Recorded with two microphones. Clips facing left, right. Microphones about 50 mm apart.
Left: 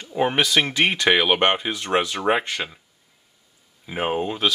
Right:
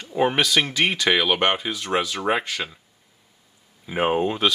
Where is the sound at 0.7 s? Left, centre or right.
Left.